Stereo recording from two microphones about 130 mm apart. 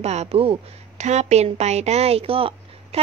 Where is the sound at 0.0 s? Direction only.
55° right (ahead or behind).